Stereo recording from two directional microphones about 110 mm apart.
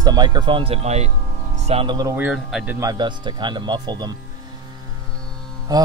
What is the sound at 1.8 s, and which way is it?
Speech, 35° right (ahead or behind).